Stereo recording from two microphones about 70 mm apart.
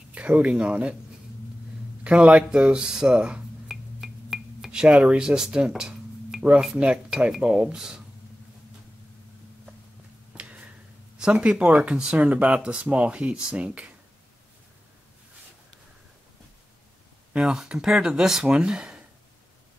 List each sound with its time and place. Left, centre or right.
0.1 s speech: centre
2.0 s speech: centre
3.6 s a sound: centre
6.8 s speech: centre
10.3 s a sound: centre
11.1 s speech: centre
17.3 s speech: centre